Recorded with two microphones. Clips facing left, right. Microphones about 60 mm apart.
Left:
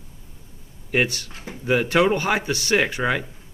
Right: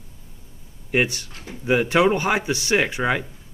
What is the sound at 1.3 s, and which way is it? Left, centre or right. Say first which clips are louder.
Speech: left 1 dB; left.